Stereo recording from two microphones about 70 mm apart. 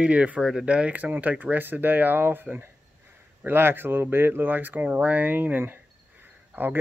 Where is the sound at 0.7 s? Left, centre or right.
Centre.